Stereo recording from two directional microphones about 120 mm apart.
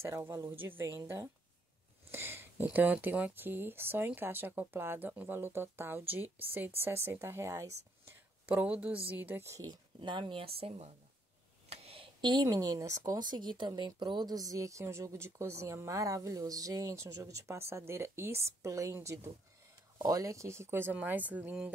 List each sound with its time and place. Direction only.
0.0 s speech: 20° right (ahead or behind)
8.5 s speech: 10° right (ahead or behind)
9.7 s speech: 45° right (ahead or behind); by 21.7 s 15° right (ahead or behind)